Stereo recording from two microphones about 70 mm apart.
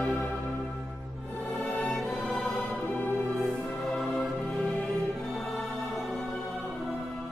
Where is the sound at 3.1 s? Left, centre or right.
Right.